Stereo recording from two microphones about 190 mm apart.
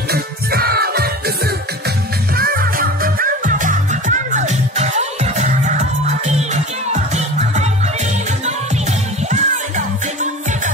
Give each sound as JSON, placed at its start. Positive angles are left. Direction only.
{"t": 0.1, "sound": "music", "side_deg": -55}
{"t": 9.3, "sound": "music", "side_deg": -40}